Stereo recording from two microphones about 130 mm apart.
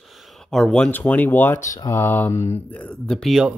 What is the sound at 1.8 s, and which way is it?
Mantra, 20° left (ahead or behind).